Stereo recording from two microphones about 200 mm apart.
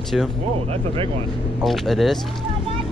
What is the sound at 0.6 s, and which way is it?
Speech, 30° right (ahead or behind).